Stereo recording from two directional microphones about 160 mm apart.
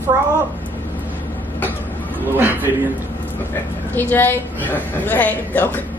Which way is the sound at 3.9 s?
10° left (ahead or behind).